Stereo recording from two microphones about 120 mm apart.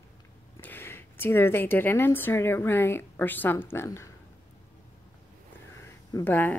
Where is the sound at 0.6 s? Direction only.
15° left (ahead or behind).